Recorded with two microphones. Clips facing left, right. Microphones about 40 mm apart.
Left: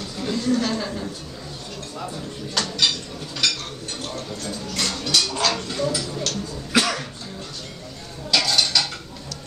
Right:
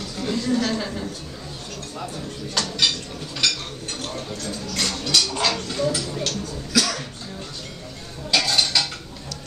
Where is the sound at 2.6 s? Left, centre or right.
Centre.